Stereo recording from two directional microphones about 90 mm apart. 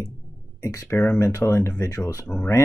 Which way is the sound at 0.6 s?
35° left (ahead or behind).